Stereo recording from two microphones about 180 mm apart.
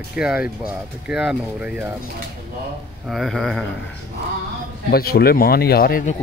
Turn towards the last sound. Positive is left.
turn(degrees=60)  # may be behind; listen again after turning